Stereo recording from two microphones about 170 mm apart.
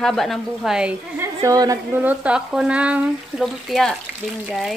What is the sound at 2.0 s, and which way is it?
Speech, 10° right (ahead or behind).